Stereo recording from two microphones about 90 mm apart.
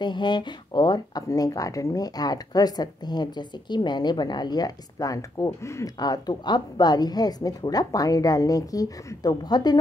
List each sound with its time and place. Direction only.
0.0 s speech: 60° left (ahead or behind)